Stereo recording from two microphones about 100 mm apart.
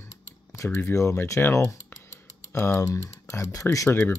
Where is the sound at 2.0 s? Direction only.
25° left (ahead or behind).